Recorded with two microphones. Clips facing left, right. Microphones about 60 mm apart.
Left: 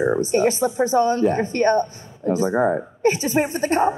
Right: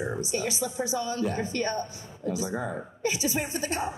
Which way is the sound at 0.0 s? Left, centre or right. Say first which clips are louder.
Left 12 dB; left.